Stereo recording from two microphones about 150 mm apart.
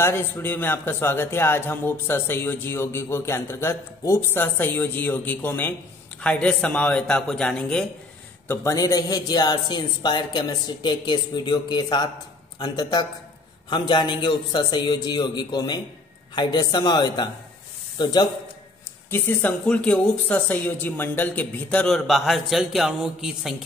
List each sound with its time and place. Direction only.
0.0 s a man's voice: 15° left (ahead or behind)
8.5 s speech: 20° left (ahead or behind)
19.0 s a man's voice: 15° left (ahead or behind); by 23.5 s centre (ahead or behind)